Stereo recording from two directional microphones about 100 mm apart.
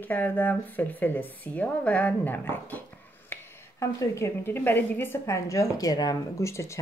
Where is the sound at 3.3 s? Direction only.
30° left (ahead or behind).